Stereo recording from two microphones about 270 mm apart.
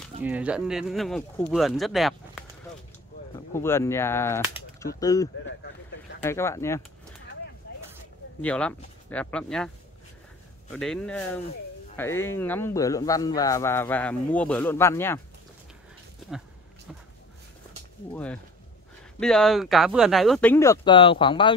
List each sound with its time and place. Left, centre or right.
0.2 s speech: centre
3.5 s speech: centre
5.4 s a sound: left
6.2 s speech: centre
8.4 s speech: centre
10.7 s speech: centre
18.1 s speech: centre